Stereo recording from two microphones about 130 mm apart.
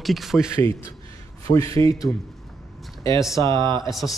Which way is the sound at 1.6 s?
45° right (ahead or behind).